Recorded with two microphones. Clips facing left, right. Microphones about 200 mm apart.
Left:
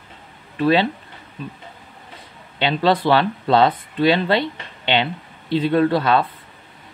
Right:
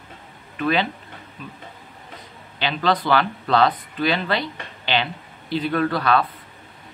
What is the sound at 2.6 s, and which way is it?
Speech, 25° left (ahead or behind).